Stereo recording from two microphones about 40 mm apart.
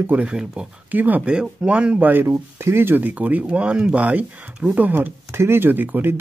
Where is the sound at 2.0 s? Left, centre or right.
Right.